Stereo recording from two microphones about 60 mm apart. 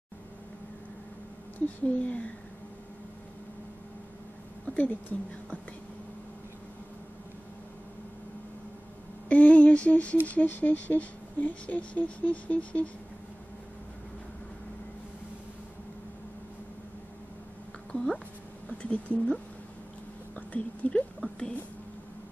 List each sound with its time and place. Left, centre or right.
2.0 s speech: left
4.6 s a woman's voice: left
9.3 s a sound: left
10.2 s speech: left
17.9 s a sound: centre
18.7 s speech: left